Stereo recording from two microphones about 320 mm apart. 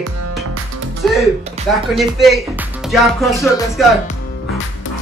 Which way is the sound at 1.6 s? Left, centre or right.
Centre.